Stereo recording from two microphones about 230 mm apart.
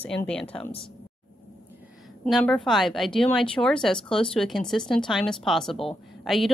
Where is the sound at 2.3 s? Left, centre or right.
Centre.